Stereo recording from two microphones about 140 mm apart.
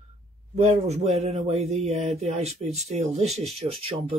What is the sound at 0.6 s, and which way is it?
Speech, 50° right (ahead or behind).